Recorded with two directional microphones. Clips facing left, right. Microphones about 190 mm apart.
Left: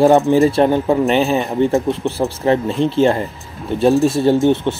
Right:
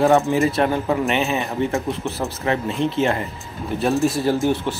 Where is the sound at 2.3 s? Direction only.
30° left (ahead or behind).